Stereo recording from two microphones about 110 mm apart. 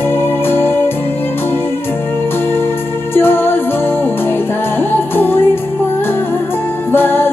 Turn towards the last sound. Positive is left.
turn(degrees=20)  # may be behind; listen again after turning